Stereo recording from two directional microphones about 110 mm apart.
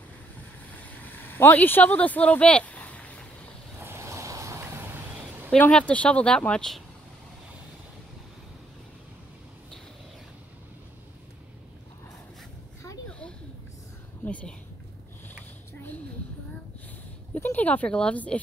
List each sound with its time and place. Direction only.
0.7 s vehicle: 15° left (ahead or behind)
3.8 s vehicle: 25° right (ahead or behind)
5.6 s speech: 10° left (ahead or behind)
14.2 s speech: 10° left (ahead or behind)
17.3 s speech: 15° left (ahead or behind)